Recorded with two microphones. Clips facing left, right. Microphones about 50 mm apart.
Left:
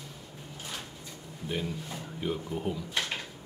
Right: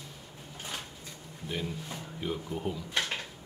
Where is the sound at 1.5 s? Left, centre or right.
Centre.